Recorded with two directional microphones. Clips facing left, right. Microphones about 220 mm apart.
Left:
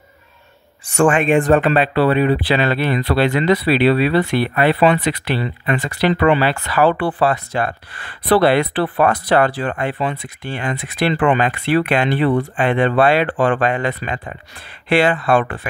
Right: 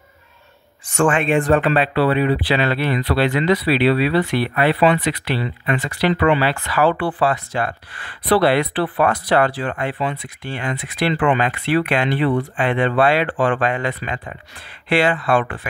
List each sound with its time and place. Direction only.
1.0 s speech: 15° left (ahead or behind)
1.8 s speech: 45° left (ahead or behind)
12.8 s speech: 50° left (ahead or behind)